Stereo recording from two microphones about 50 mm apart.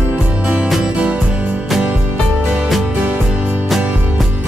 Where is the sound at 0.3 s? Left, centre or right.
Right.